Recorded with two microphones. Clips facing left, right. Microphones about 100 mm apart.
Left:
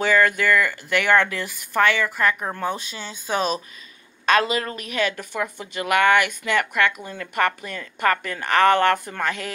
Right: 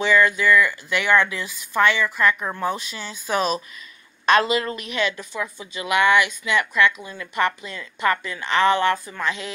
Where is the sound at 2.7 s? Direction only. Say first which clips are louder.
Right 1 dB; 30° left (ahead or behind).